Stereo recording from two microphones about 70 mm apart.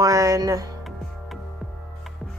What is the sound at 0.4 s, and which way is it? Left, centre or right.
Speech, right.